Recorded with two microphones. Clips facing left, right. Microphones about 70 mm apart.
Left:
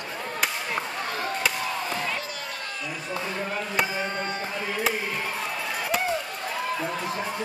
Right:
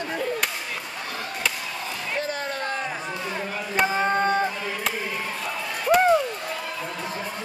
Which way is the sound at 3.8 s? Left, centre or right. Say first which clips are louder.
Right 7 dB; right.